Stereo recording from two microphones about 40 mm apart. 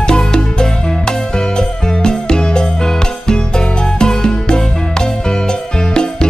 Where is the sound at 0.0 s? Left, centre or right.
Centre.